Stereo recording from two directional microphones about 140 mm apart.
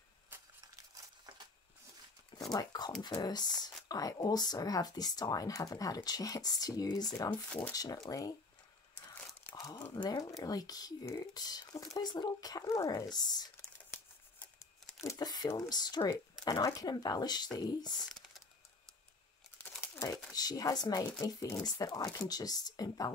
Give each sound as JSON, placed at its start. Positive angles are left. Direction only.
{"t": 0.3, "sound": "a sound", "side_deg": -15}
{"t": 2.5, "sound": "a sound", "side_deg": 30}
{"t": 3.0, "sound": "speech", "side_deg": 30}
{"t": 7.2, "sound": "speech", "side_deg": 10}
{"t": 7.7, "sound": "speech", "side_deg": 25}
{"t": 9.2, "sound": "crumpling", "side_deg": 15}
{"t": 9.6, "sound": "crumpling", "side_deg": 25}
{"t": 9.9, "sound": "speech", "side_deg": 25}
{"t": 15.0, "sound": "speech", "side_deg": 25}
{"t": 18.1, "sound": "typing", "side_deg": 0}
{"t": 19.6, "sound": "crumpling", "side_deg": 10}
{"t": 20.3, "sound": "speech", "side_deg": 25}